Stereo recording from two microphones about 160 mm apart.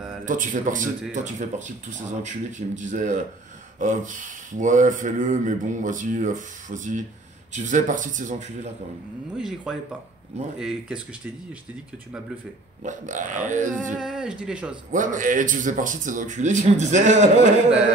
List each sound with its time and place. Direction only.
0.2 s speech: 55° right (ahead or behind)
9.4 s speech: 5° right (ahead or behind)
12.8 s speech: 50° right (ahead or behind)
13.9 s speech: 5° right (ahead or behind)
14.9 s speech: 55° right (ahead or behind)